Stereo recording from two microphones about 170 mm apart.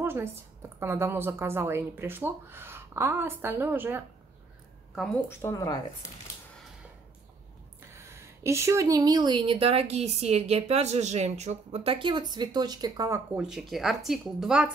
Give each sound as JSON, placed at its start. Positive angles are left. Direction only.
{"t": 0.0, "sound": "a woman's voice", "side_deg": -15}
{"t": 5.3, "sound": "speech", "side_deg": 15}
{"t": 8.0, "sound": "a woman's voice", "side_deg": -15}
{"t": 13.3, "sound": "speech", "side_deg": -5}